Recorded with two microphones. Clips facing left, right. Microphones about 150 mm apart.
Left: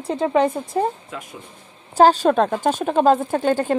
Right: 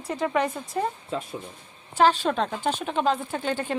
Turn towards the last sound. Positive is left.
turn(degrees=45)  # may be behind; listen again after turning